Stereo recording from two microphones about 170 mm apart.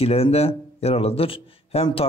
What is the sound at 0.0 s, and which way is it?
Speech, 35° left (ahead or behind).